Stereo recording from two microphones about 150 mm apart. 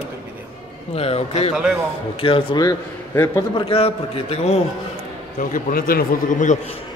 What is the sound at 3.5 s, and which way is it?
A man's voice, 40° left (ahead or behind).